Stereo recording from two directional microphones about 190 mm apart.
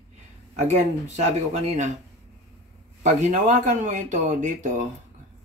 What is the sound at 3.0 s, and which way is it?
Speech, 40° right (ahead or behind).